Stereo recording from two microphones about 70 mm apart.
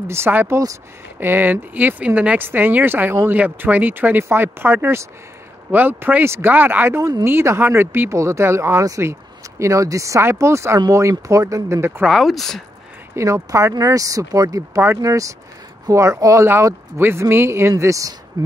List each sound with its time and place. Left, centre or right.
0.1 s speech: right
6.2 s speech: right
6.5 s speech: right
8.1 s speech: right
12.1 s speech: centre
13.1 s speech: right
17.0 s speech: right